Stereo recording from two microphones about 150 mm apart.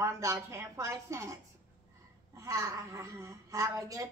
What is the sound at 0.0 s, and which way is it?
A woman's voice, 20° right (ahead or behind).